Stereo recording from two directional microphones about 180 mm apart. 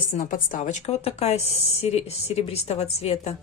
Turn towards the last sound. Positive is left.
turn(degrees=35)  # may be behind; listen again after turning